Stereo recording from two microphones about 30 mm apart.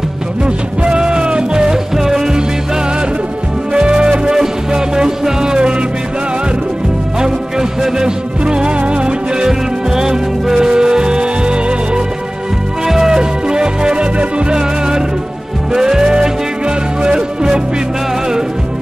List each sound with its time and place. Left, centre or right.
0.9 s music: right
3.7 s music: right
7.2 s music: right
9.5 s music: centre
12.8 s music: centre
13.2 s music: right